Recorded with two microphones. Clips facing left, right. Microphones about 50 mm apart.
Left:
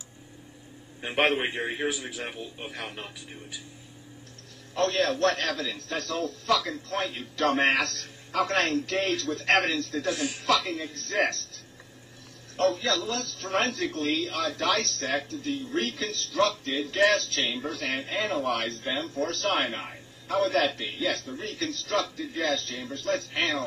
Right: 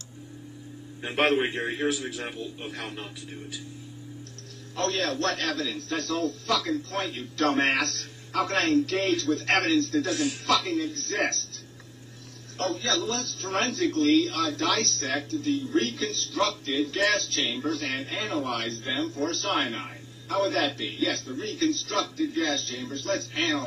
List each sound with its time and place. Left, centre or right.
1.0 s a man's voice: centre
4.7 s a man's voice: centre
6.0 s a man's voice: left
10.7 s a man's voice: left
12.5 s a man's voice: centre
19.8 s music: centre
20.3 s a man's voice: left